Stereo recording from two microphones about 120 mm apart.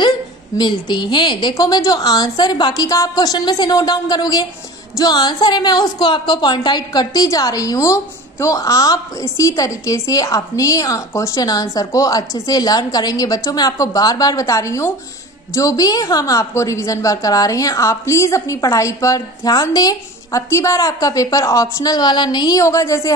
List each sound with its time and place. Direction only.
0.6 s a woman's voice: 40° left (ahead or behind)